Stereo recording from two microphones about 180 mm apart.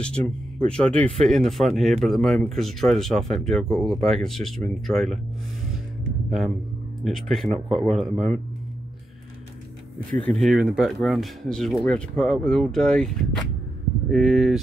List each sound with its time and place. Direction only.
0.7 s speech: 5° left (ahead or behind)
7.0 s speech: centre (ahead or behind)
10.0 s speech: 5° left (ahead or behind)